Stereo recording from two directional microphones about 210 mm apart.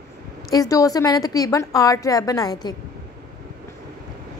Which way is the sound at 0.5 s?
15° left (ahead or behind).